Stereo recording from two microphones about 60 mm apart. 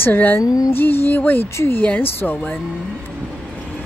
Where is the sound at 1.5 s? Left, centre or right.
Left.